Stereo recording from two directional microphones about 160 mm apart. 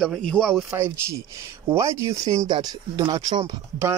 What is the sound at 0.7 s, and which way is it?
Speech, 15° right (ahead or behind).